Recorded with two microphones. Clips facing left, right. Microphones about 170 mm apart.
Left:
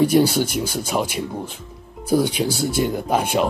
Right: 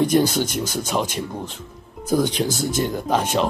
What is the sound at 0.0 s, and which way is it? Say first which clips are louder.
Speech: left 2 dB; 10° left (ahead or behind).